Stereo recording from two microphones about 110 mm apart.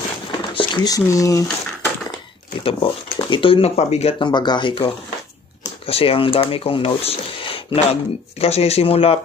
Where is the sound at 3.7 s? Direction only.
70° left (ahead or behind).